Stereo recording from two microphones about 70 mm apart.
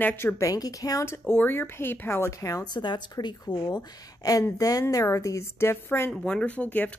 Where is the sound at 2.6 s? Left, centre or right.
Left.